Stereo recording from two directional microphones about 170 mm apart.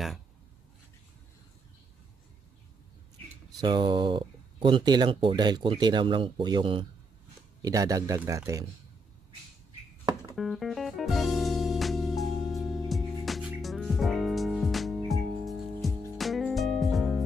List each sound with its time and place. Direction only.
3.6 s speech: 25° right (ahead or behind)
10.3 s music: centre (ahead or behind)